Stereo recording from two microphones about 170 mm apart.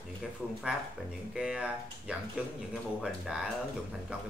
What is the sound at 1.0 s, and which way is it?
Speech, 5° right (ahead or behind).